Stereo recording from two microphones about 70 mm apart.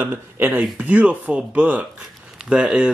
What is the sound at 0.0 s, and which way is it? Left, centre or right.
Speech, right.